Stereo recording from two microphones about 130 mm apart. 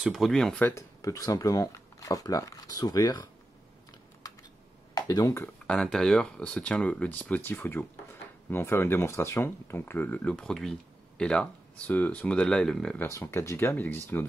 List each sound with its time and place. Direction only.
0.0 s speech: centre (ahead or behind)
0.7 s speech: 25° left (ahead or behind)
4.9 s speech: 30° left (ahead or behind)
5.7 s speech: 5° left (ahead or behind)
13.0 s speech: 20° left (ahead or behind)